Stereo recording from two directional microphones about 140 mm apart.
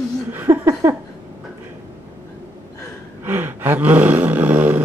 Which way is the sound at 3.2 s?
15° right (ahead or behind).